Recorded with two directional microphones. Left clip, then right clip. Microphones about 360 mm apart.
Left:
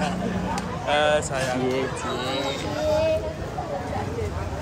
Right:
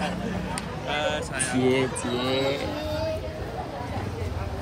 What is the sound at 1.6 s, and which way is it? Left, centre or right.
Speech, right.